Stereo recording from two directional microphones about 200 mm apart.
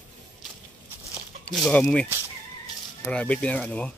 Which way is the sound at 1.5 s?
5° left (ahead or behind).